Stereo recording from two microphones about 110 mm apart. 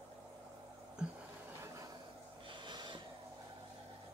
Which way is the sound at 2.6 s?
45° right (ahead or behind).